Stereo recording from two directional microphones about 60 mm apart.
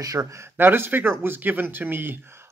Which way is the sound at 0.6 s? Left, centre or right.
Right.